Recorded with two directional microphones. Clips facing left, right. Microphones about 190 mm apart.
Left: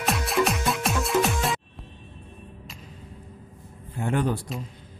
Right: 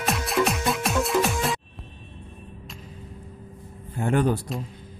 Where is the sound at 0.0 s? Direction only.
Centre (ahead or behind).